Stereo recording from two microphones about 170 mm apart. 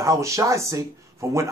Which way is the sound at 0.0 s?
15° right (ahead or behind).